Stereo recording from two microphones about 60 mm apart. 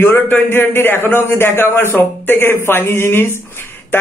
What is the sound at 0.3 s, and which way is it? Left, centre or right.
A man's voice, left.